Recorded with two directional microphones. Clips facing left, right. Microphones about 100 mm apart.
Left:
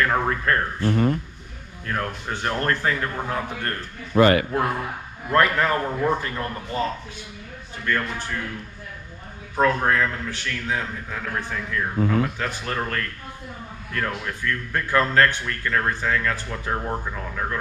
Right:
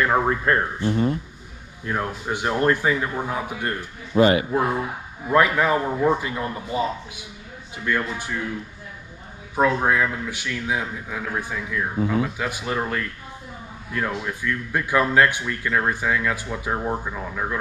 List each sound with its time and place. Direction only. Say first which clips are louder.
0.0 s speech: right 2 dB; 15° right (ahead or behind)
0.8 s speech: left 2 dB; 55° left (ahead or behind)
1.9 s speech: right 2 dB; 15° right (ahead or behind)
4.1 s a man's voice: even; 55° left (ahead or behind)
4.5 s speech: right 2 dB; 15° right (ahead or behind)
9.6 s speech: right 1 dB; 10° right (ahead or behind)